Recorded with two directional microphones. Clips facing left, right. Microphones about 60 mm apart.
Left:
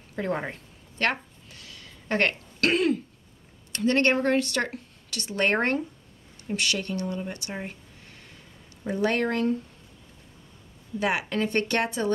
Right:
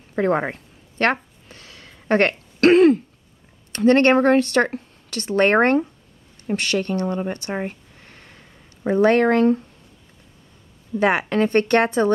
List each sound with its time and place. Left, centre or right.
0.1 s a sound: right
3.7 s speech: right
8.8 s speech: right
11.0 s speech: right